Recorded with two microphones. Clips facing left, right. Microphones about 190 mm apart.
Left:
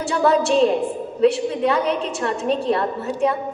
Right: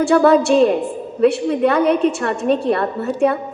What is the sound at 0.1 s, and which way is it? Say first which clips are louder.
A woman's voice: right 4 dB; 60° right (ahead or behind).